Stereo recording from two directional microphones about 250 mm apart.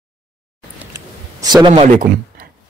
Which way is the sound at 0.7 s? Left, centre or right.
Centre.